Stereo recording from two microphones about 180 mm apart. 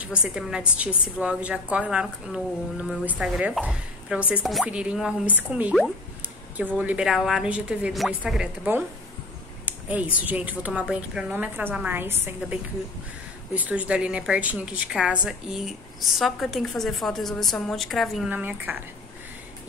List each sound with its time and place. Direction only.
0.0 s a woman's voice: 5° right (ahead or behind)
9.7 s a sound: 10° right (ahead or behind)
10.1 s a woman's voice: 10° right (ahead or behind)
13.6 s a woman's voice: 5° right (ahead or behind)